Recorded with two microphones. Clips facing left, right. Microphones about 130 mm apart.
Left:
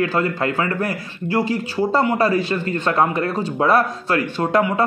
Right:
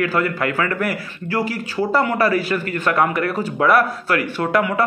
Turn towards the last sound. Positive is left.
turn(degrees=25)  # may be behind; listen again after turning